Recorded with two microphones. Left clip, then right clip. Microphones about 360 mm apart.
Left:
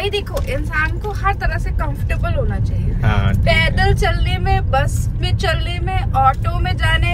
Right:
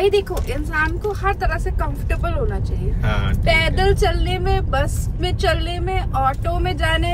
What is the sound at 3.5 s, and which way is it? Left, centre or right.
Speech, centre.